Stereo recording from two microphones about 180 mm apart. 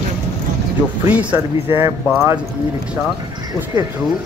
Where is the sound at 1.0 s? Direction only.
10° right (ahead or behind).